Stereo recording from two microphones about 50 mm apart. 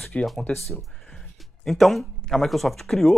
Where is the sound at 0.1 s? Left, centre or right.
Left.